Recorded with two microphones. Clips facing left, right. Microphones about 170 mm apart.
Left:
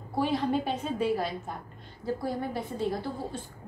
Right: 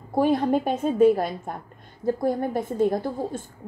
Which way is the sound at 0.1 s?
50° right (ahead or behind).